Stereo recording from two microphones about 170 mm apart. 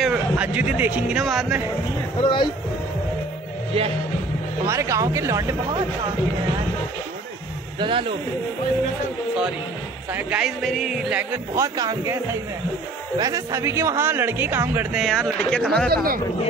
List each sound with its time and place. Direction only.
0.0 s speech: 5° right (ahead or behind)
2.2 s speech: 30° left (ahead or behind)
4.6 s speech: 15° right (ahead or behind)
7.8 s speech: 30° right (ahead or behind)
10.1 s speech: 5° right (ahead or behind)
11.5 s speech: 20° right (ahead or behind)
15.0 s speech: centre (ahead or behind)
15.9 s speech: 60° right (ahead or behind)